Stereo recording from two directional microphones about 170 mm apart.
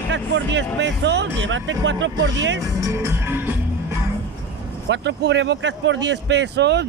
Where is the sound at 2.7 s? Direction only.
15° right (ahead or behind).